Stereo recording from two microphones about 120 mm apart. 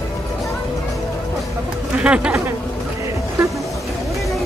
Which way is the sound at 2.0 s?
10° right (ahead or behind).